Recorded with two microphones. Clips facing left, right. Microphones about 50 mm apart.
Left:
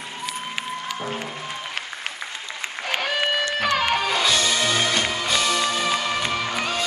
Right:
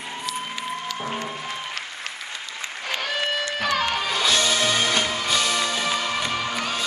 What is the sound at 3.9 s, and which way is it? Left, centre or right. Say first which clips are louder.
Music: left 1 dB; centre.